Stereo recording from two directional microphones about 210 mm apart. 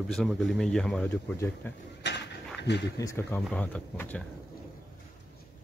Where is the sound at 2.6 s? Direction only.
55° left (ahead or behind).